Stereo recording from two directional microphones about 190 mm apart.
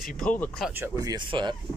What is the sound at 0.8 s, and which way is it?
Speech, 20° right (ahead or behind).